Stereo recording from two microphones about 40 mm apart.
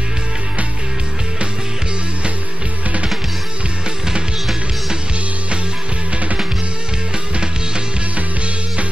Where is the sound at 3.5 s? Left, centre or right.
Right.